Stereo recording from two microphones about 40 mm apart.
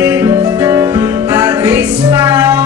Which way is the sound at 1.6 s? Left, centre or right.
Right.